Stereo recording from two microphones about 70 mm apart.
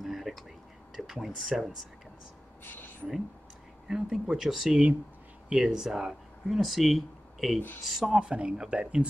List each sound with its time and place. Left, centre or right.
0.0 s whispering: centre
0.9 s speech: centre
2.6 s a woman's voice: left
3.9 s speech: centre
8.2 s speech: centre